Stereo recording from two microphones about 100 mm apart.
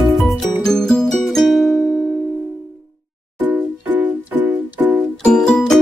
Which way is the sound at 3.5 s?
20° right (ahead or behind).